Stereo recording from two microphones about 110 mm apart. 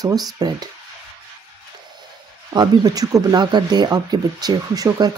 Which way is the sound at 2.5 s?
35° right (ahead or behind).